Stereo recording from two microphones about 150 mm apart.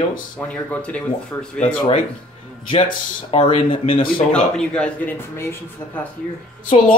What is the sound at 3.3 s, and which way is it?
Speech, 45° left (ahead or behind).